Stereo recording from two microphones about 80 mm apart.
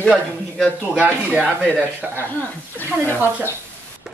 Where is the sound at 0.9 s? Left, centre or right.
Centre.